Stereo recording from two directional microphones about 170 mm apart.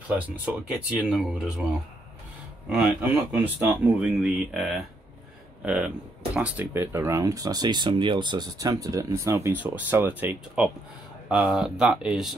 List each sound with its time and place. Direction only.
0.1 s speech: 5° right (ahead or behind)
2.7 s speech: 5° right (ahead or behind)